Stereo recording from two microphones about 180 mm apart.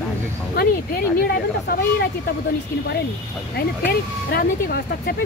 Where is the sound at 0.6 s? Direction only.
60° left (ahead or behind).